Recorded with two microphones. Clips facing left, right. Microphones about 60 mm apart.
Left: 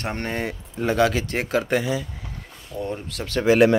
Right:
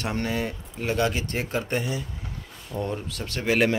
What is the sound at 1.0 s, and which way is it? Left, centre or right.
Speech, left.